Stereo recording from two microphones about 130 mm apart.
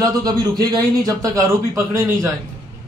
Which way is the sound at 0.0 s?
30° right (ahead or behind).